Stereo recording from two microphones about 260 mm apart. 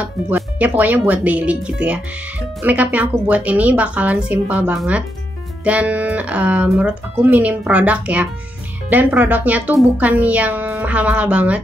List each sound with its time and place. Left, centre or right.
0.0 s speech: centre